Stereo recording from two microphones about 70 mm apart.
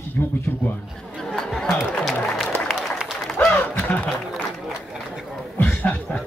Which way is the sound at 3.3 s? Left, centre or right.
Left.